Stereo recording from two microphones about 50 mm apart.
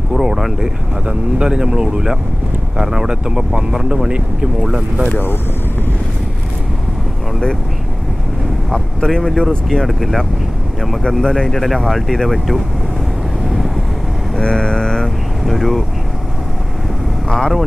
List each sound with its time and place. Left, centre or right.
0.1 s speech: centre
1.0 s speech: centre
8.7 s speech: centre
11.0 s speech: centre
14.4 s mantra: centre
15.4 s speech: centre
17.3 s speech: centre